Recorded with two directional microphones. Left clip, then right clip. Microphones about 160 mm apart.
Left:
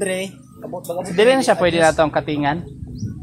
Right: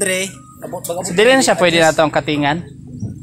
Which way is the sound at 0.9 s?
50° right (ahead or behind).